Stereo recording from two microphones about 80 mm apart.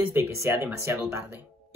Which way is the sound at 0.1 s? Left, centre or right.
Right.